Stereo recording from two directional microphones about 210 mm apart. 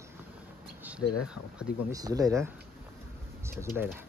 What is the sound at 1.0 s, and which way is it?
Speech, 90° left.